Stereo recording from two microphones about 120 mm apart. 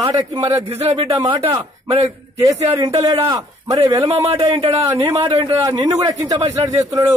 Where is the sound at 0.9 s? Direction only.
35° right (ahead or behind).